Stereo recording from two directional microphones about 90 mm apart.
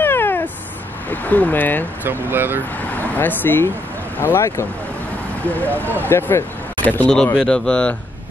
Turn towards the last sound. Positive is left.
turn(degrees=10)  # may be behind; listen again after turning